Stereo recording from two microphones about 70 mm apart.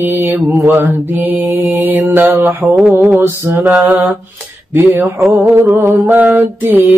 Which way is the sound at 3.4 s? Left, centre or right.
Right.